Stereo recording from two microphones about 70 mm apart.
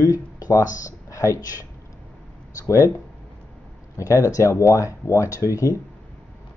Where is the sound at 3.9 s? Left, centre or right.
Left.